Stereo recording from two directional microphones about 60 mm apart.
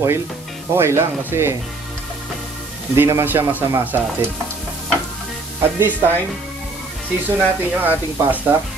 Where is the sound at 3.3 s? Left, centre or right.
Right.